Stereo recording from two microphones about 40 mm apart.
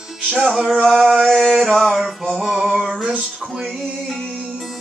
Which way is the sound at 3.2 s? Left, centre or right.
Centre.